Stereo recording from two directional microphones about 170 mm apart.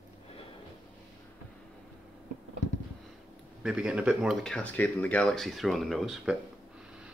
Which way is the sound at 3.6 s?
5° right (ahead or behind).